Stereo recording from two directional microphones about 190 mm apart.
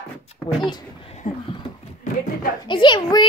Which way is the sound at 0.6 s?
25° left (ahead or behind).